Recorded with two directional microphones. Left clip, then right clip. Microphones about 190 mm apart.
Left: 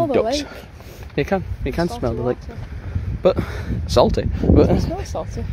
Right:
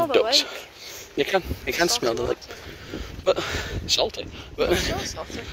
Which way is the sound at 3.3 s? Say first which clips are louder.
Right 1 dB; 5° left (ahead or behind).